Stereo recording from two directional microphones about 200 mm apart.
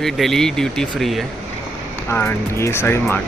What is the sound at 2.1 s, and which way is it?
Speech, 10° left (ahead or behind).